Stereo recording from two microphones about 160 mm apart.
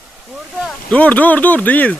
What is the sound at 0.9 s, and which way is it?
Speech, 10° left (ahead or behind).